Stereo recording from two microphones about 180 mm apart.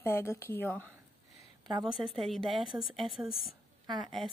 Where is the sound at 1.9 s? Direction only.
Centre (ahead or behind).